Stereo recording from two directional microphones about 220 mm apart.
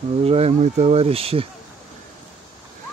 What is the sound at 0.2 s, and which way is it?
Speech, 30° right (ahead or behind).